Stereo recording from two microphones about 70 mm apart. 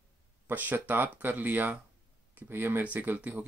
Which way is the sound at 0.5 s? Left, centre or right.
Right.